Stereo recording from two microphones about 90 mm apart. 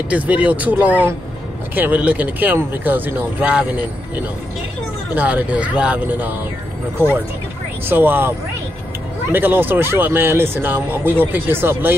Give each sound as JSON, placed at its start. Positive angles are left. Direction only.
{"t": 0.1, "sound": "speech", "side_deg": -15}
{"t": 5.1, "sound": "speech", "side_deg": -15}
{"t": 7.8, "sound": "speech", "side_deg": -25}